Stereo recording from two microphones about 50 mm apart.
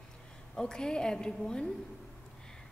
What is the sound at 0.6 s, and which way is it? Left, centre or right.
A woman's voice, centre.